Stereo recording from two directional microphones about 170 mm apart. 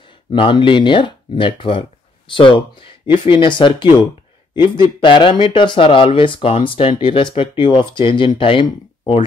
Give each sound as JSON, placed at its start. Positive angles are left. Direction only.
{"t": 0.3, "sound": "speech", "side_deg": 30}